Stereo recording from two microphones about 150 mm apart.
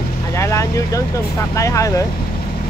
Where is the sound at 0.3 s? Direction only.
20° left (ahead or behind).